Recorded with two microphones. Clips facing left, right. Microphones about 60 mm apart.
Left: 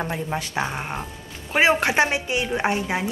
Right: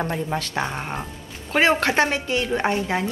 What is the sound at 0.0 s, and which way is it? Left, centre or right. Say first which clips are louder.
A woman's voice: right 2 dB; centre.